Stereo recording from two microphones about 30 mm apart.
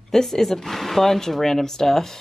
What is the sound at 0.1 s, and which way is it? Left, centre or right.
Speech, centre.